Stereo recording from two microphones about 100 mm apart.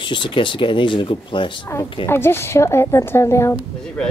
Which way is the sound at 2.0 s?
25° left (ahead or behind).